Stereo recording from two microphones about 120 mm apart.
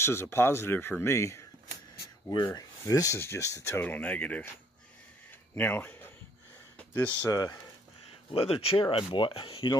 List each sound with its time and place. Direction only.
0.0 s speech: 20° left (ahead or behind)
2.3 s speech: 35° left (ahead or behind); by 4.6 s 15° left (ahead or behind)
5.6 s speech: 15° left (ahead or behind)
6.8 s a sound: 10° left (ahead or behind)
7.2 s speech: 30° left (ahead or behind)
8.3 s speech: 50° left (ahead or behind)